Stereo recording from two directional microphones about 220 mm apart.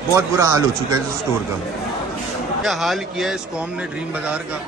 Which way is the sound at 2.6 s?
Centre (ahead or behind).